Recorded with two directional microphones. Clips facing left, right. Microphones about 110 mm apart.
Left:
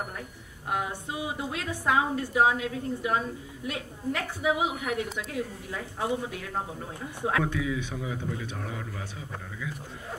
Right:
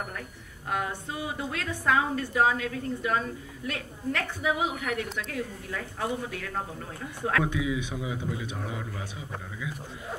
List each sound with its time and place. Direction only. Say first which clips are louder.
0.7 s a woman's voice: even; 15° left (ahead or behind)
7.4 s speech: right 1 dB; 15° right (ahead or behind)